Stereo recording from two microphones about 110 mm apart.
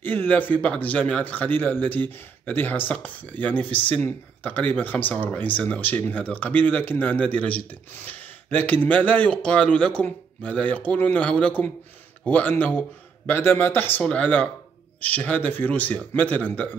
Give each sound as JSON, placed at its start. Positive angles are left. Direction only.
{"t": 0.0, "sound": "a man's voice", "side_deg": 15}